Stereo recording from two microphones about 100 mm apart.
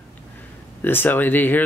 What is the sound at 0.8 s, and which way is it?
Speech, 20° left (ahead or behind).